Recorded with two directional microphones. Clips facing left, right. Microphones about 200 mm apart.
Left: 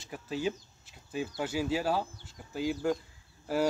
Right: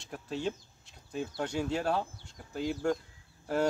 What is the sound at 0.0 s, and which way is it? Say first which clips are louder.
Speech: left 2 dB; 5° left (ahead or behind).